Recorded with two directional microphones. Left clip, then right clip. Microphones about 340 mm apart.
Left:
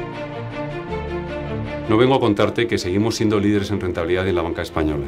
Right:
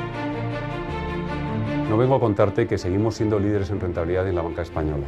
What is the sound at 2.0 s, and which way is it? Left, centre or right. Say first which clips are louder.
Speech: left 3 dB; right.